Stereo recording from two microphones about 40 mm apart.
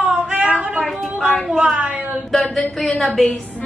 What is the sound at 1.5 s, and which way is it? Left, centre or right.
Speech, centre.